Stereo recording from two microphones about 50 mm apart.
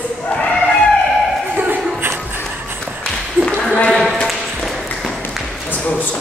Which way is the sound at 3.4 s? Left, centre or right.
Centre.